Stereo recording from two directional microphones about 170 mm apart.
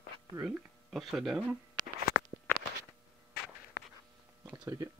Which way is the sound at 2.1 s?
60° left (ahead or behind).